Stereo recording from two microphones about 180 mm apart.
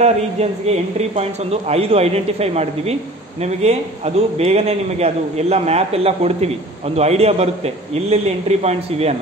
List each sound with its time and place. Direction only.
0.0 s a man's voice: 35° right (ahead or behind)